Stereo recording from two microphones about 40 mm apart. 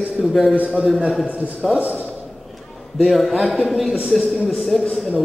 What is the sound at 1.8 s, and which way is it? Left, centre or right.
Speech, right.